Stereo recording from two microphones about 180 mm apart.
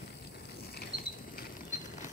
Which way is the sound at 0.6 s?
55° left (ahead or behind).